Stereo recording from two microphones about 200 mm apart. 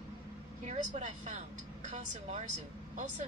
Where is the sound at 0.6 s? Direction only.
35° right (ahead or behind).